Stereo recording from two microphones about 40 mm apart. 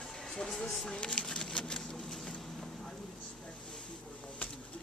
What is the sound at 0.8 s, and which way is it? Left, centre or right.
Speech, left.